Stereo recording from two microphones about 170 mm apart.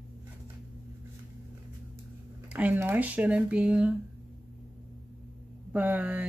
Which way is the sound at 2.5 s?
10° right (ahead or behind).